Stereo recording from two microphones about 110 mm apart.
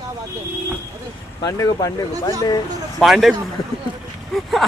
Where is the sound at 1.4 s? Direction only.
35° left (ahead or behind).